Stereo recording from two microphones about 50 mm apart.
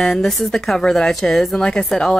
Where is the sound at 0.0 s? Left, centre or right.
Centre.